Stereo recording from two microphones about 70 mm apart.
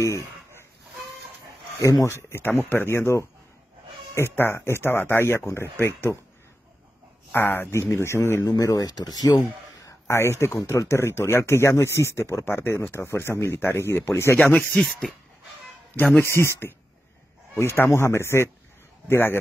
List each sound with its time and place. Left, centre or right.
0.0 s chicken: left
1.8 s speech: left
2.2 s speech: left
7.3 s speech: left
8.5 s speech: left
9.8 s speech: left
14.6 s speech: centre
16.4 s speech: left
17.7 s speech: left